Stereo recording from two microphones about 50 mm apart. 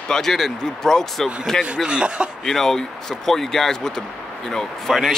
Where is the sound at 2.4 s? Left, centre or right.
Centre.